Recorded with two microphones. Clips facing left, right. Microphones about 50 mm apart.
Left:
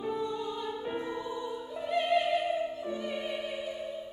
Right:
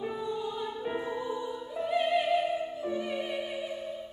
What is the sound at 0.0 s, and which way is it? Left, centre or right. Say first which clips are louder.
Music: even; centre.